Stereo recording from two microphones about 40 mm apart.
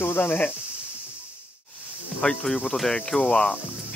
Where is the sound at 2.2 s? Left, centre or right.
Centre.